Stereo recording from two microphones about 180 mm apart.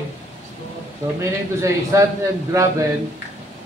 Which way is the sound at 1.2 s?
15° right (ahead or behind).